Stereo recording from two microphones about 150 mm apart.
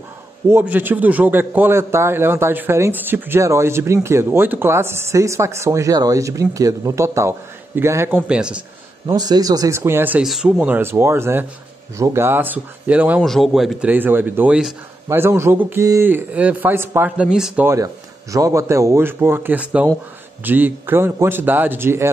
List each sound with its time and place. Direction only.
0.5 s a man's voice: 15° right (ahead or behind)
9.0 s speech: 25° right (ahead or behind)
10.2 s a man's voice: centre (ahead or behind)
13.2 s a man's voice: centre (ahead or behind)
18.3 s a man's voice: 20° right (ahead or behind)